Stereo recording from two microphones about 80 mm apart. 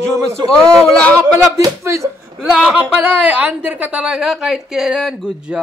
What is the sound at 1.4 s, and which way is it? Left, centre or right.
Speech, right.